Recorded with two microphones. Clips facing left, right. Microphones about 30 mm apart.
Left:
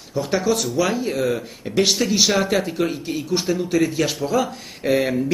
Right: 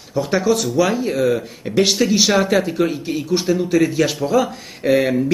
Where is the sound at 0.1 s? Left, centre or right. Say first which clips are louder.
Right 3 dB; centre.